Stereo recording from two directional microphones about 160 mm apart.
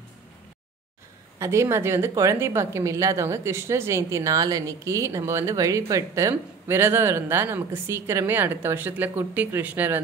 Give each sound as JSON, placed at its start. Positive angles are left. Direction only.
{"t": 1.4, "sound": "a woman's voice", "side_deg": -15}